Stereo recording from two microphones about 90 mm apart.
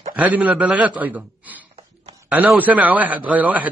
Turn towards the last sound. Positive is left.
turn(degrees=-15)  # may be behind; listen again after turning